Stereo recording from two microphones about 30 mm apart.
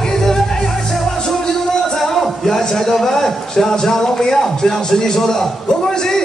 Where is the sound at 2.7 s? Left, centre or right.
Centre.